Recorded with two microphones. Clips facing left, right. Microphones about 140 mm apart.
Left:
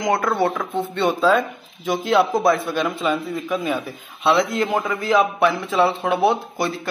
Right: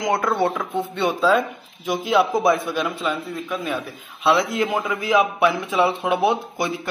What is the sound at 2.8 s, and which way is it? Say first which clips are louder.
Speech: left 3 dB; centre (ahead or behind).